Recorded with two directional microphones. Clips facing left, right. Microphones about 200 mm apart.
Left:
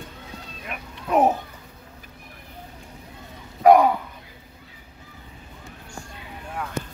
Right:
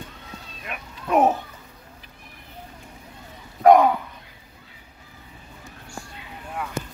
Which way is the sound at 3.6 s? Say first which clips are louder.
Even; 10° left (ahead or behind).